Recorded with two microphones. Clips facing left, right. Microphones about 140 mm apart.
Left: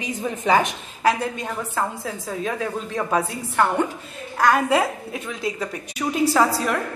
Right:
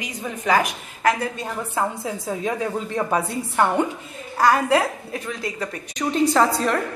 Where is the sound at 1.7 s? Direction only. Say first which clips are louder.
Right 3 dB; 10° right (ahead or behind).